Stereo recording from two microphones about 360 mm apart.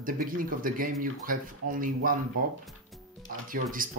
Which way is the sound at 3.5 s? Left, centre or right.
Right.